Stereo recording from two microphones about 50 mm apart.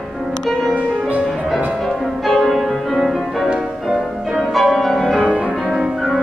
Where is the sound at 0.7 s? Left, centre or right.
Right.